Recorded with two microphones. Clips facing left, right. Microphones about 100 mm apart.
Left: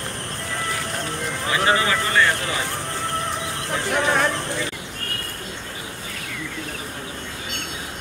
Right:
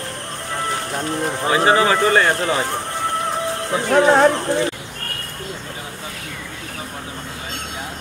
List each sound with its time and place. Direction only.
1.2 s speech: 30° right (ahead or behind)
3.9 s speech: 35° right (ahead or behind)